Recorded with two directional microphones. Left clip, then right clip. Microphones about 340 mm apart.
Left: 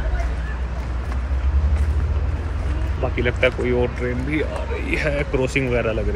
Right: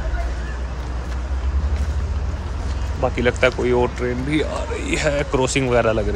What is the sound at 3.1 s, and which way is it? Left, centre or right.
Speech, centre.